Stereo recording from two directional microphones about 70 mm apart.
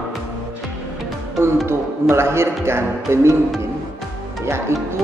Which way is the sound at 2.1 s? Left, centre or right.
Right.